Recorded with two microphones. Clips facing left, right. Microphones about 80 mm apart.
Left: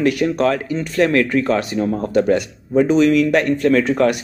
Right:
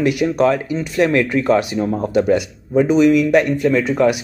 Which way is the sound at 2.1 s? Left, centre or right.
Centre.